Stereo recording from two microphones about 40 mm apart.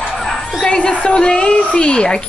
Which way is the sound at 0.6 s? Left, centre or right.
Left.